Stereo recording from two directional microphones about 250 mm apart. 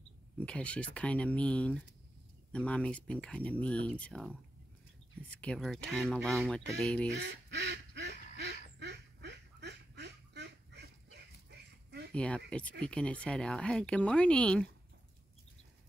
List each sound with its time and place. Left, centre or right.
0.4 s speech: centre
7.1 s duck: right
12.1 s speech: centre